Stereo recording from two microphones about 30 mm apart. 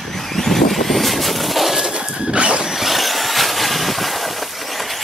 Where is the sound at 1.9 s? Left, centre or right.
Right.